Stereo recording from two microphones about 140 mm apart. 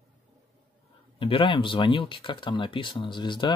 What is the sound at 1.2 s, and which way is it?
Speech, 35° left (ahead or behind).